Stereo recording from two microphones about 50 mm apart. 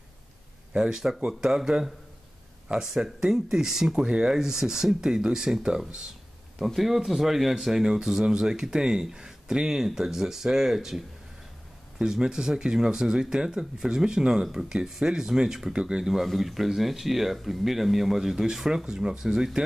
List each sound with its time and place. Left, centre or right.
0.7 s speech: centre
16.1 s speech: centre